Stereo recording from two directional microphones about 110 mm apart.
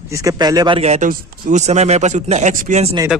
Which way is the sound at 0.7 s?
85° right.